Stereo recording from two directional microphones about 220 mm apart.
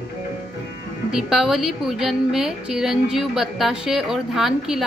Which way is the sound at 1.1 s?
Centre (ahead or behind).